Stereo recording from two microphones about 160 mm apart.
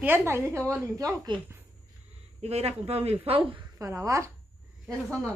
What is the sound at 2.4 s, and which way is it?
A woman's voice, 40° right (ahead or behind).